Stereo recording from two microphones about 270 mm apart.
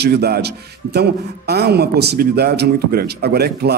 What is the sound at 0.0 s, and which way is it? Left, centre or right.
Speech, right.